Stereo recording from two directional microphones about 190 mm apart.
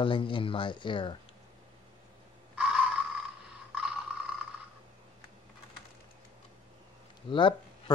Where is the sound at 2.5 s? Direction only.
5° right (ahead or behind).